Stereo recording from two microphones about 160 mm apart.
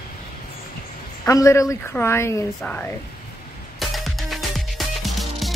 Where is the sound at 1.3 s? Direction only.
20° left (ahead or behind).